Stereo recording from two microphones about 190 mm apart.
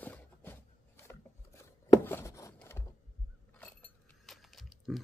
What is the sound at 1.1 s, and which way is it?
Writing, 15° left (ahead or behind).